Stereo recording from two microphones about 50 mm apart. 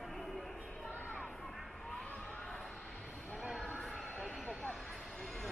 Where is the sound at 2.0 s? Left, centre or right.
Left.